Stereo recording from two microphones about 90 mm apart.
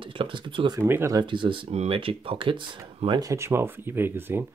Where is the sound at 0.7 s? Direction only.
30° right (ahead or behind).